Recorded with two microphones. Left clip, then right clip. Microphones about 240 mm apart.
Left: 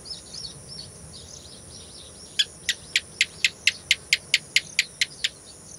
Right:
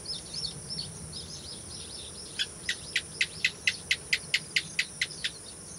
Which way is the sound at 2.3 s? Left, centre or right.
Left.